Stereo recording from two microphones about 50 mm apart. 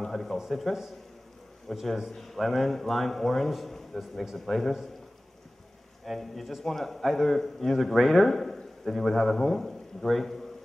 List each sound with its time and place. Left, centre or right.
0.0 s a sound: centre
0.4 s a man's voice: centre
6.0 s a man's voice: centre